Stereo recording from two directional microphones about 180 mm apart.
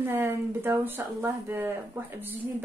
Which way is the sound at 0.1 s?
10° right (ahead or behind).